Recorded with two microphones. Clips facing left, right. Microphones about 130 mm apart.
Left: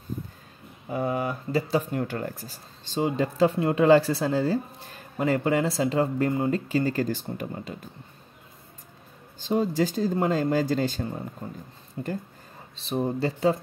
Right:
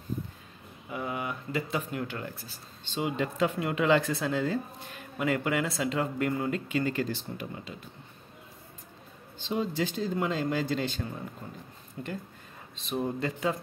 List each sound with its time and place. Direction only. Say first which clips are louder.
0.8 s speech: left 7 dB; 40° left (ahead or behind)
9.4 s speech: left 6 dB; 45° left (ahead or behind)